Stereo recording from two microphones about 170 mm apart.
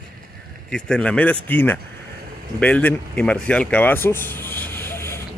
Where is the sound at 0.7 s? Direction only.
5° left (ahead or behind).